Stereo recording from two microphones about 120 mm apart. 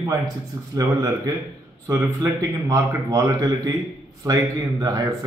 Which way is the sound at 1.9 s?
30° right (ahead or behind).